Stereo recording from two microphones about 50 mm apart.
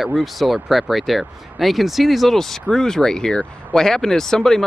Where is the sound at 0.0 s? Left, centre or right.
Centre.